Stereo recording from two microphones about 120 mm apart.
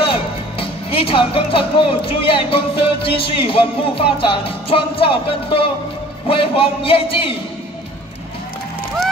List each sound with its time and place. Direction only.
0.0 s speech: 50° left (ahead or behind)